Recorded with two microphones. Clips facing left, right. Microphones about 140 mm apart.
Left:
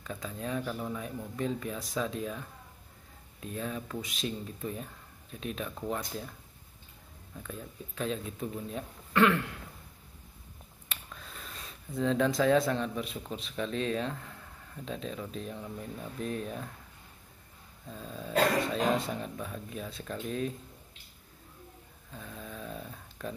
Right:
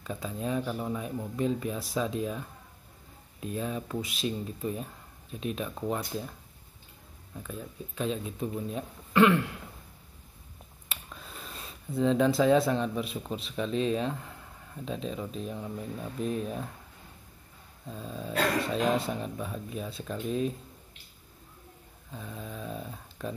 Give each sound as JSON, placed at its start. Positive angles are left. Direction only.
{"t": 0.0, "sound": "speech", "side_deg": -15}
{"t": 3.5, "sound": "speech", "side_deg": -15}
{"t": 7.4, "sound": "speech", "side_deg": -5}
{"t": 10.9, "sound": "a sound", "side_deg": -10}
{"t": 13.4, "sound": "speech", "side_deg": -10}
{"t": 15.6, "sound": "speech", "side_deg": -20}
{"t": 17.8, "sound": "speech", "side_deg": -5}
{"t": 22.1, "sound": "speech", "side_deg": -10}